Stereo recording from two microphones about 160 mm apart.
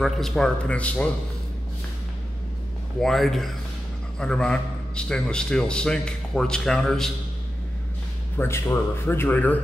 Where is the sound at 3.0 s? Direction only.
Centre (ahead or behind).